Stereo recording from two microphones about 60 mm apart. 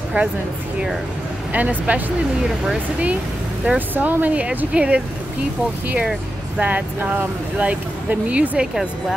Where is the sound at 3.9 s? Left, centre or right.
Right.